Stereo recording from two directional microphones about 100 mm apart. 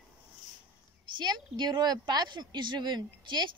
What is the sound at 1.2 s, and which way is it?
Speech, 45° right (ahead or behind).